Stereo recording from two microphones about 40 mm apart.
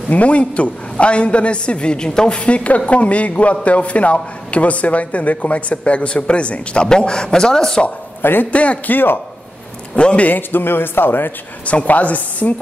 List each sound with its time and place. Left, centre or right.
0.1 s a man's voice: left; by 7.8 s centre
8.2 s a man's voice: left
8.5 s a man's voice: left
8.9 s a man's voice: left
9.9 s a man's voice: left
10.3 s a man's voice: left
11.6 s a man's voice: left